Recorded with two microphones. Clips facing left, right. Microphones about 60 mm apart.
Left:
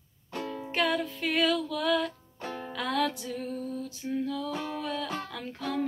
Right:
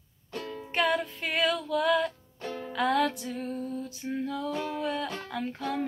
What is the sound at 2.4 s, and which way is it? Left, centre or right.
Music, left.